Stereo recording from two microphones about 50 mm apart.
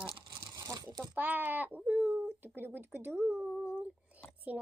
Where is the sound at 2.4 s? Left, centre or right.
Right.